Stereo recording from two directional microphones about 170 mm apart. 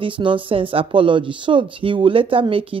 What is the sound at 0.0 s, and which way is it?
A woman's voice, 30° right (ahead or behind).